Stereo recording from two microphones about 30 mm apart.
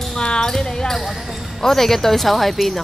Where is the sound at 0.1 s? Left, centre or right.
Left; by 2.8 s centre.